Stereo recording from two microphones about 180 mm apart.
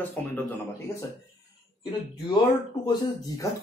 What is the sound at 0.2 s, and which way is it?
Speech, 10° left (ahead or behind).